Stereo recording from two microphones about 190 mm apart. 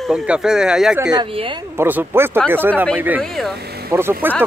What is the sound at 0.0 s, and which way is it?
Speech, centre (ahead or behind).